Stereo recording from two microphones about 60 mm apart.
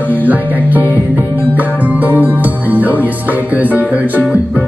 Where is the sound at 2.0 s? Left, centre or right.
Right.